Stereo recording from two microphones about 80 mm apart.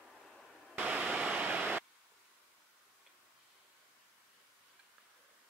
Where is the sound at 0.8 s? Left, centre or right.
Centre.